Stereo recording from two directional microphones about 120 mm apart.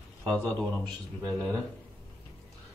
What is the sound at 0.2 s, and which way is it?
Speech, 10° left (ahead or behind).